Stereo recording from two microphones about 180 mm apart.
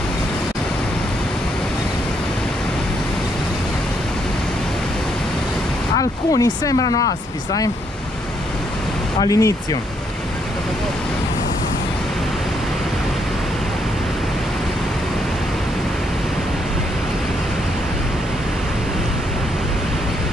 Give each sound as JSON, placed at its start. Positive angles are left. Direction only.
{"t": 5.9, "sound": "speech", "side_deg": 20}
{"t": 9.2, "sound": "speech", "side_deg": 20}